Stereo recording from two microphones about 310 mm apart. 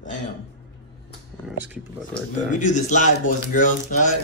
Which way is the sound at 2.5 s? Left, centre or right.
Left.